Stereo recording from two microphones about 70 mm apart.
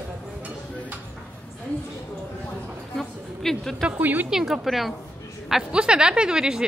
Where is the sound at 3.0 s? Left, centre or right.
Centre.